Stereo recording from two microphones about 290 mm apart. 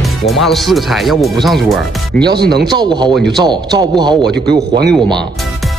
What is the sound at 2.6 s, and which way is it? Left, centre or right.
A man's voice, centre.